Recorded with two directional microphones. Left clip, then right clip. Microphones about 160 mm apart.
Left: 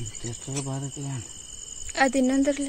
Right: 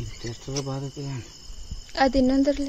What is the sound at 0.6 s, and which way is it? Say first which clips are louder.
Speech: right 1 dB; 35° left (ahead or behind).